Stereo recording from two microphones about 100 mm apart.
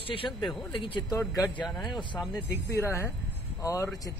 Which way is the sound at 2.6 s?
30° left (ahead or behind).